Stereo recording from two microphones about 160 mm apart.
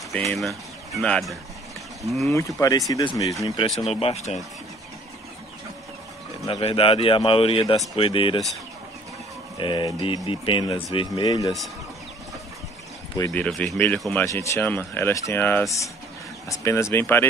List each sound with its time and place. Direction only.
0.1 s speech: 5° left (ahead or behind)
2.3 s speech: 20° left (ahead or behind)
3.4 s a man's voice: 35° left (ahead or behind)
6.4 s a man's voice: 35° left (ahead or behind)
9.6 s a man's voice: 30° left (ahead or behind)
13.3 s speech: 10° left (ahead or behind)
14.2 s speech: 20° left (ahead or behind)